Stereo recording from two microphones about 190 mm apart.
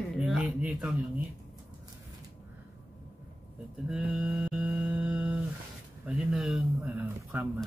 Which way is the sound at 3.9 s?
5° right (ahead or behind).